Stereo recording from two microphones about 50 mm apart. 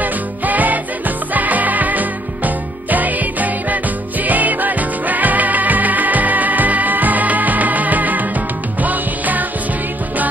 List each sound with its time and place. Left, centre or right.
0.0 s music: right